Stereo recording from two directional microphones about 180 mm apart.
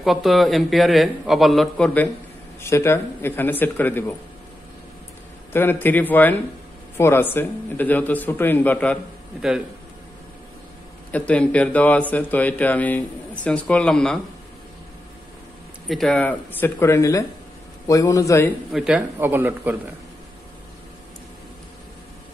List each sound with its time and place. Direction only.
0.0 s a man's voice: centre (ahead or behind)
2.6 s speech: 15° left (ahead or behind)
5.5 s speech: 10° left (ahead or behind)
11.1 s speech: 5° left (ahead or behind)
15.9 s speech: centre (ahead or behind)
18.7 s speech: 5° right (ahead or behind)